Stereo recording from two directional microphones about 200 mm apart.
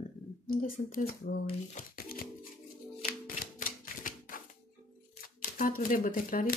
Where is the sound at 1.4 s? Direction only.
40° left (ahead or behind).